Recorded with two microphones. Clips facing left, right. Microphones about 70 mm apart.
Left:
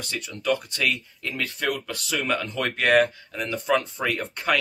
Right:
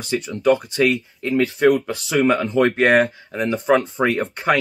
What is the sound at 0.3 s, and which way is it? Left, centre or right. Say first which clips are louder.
Speech: right 8 dB; right.